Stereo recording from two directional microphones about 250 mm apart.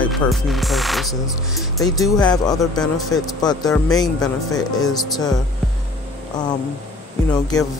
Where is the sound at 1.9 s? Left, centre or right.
Centre.